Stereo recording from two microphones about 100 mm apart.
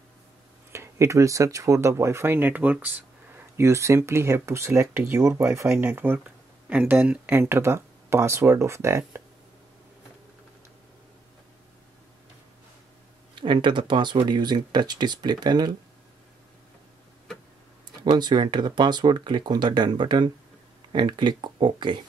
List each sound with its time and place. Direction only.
0.7 s speech: 25° right (ahead or behind)
3.5 s speech: 30° right (ahead or behind)
13.3 s speech: 55° right (ahead or behind)
18.1 s speech: 45° right (ahead or behind)